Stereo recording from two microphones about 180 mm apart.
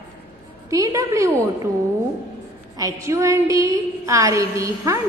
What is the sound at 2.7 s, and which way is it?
A woman's voice, 20° right (ahead or behind).